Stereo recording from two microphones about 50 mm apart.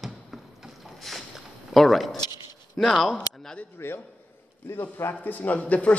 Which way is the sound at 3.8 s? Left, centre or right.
Left.